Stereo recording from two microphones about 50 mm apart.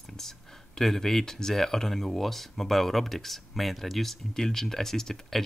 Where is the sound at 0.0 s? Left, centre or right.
Centre.